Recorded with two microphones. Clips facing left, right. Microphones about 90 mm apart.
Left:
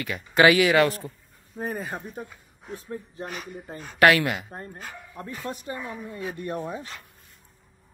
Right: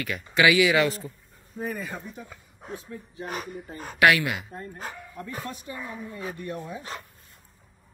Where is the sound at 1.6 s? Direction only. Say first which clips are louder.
Left 1 dB; 35° left (ahead or behind).